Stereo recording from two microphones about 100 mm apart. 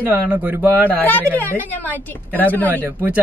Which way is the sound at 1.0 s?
15° left (ahead or behind).